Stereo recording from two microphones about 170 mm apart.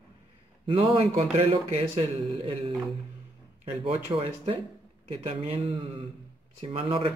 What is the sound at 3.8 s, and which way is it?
Speech, 35° right (ahead or behind).